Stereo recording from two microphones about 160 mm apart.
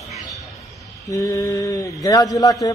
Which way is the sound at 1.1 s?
20° left (ahead or behind).